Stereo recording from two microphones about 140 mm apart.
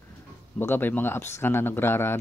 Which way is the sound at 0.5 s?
15° left (ahead or behind).